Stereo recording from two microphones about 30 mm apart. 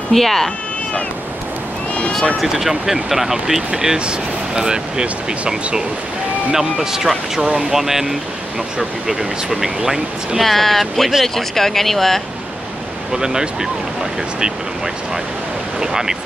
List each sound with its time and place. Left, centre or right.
0.1 s speech: centre
2.4 s speech: centre; by 5.0 s right
6.5 s speech: centre
10.4 s speech: centre
13.1 s speech: right
15.8 s speech: centre